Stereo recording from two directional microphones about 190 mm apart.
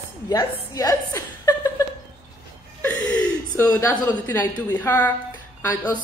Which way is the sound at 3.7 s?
15° left (ahead or behind).